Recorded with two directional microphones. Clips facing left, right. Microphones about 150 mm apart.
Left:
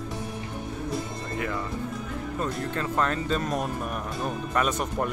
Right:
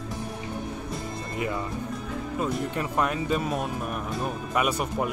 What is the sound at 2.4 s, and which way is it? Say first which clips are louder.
Speech: right 2 dB; 10° right (ahead or behind).